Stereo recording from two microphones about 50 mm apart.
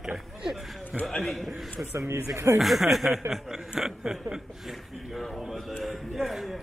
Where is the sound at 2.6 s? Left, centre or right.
Centre.